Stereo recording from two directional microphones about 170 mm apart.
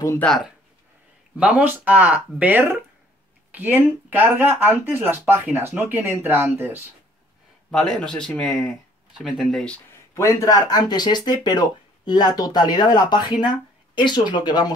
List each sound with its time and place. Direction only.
0.2 s speech: 5° left (ahead or behind)
1.3 s speech: 5° right (ahead or behind)
7.7 s speech: 5° left (ahead or behind)
10.1 s speech: 20° left (ahead or behind)